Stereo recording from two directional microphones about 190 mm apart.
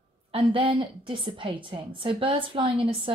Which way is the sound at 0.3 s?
30° right (ahead or behind).